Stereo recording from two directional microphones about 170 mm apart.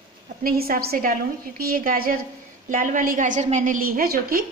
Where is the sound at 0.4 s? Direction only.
60° right (ahead or behind).